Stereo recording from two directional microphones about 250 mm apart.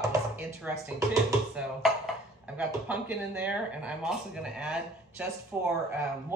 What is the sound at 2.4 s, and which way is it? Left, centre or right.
Speech, centre.